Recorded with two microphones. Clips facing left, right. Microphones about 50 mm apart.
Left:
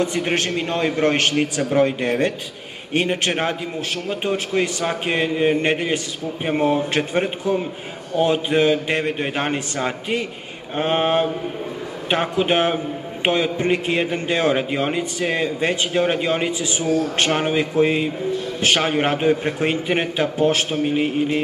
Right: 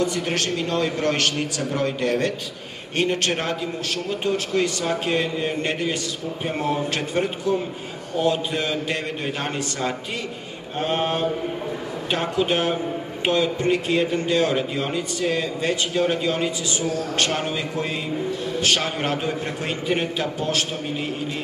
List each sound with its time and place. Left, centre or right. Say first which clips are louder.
0.0 s a man's voice: left 2 dB; left